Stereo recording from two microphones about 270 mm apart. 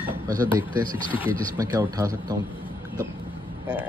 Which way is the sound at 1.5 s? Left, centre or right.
Centre.